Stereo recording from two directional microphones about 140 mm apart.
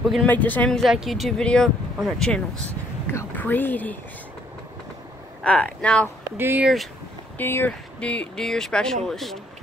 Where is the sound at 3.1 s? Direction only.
15° left (ahead or behind).